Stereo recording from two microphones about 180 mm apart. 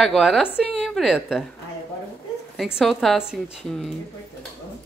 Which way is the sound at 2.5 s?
Centre (ahead or behind).